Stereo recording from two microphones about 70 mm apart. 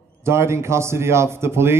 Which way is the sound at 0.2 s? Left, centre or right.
Right.